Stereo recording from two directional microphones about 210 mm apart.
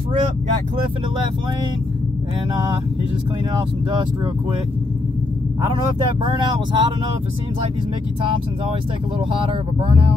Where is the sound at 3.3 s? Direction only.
20° right (ahead or behind).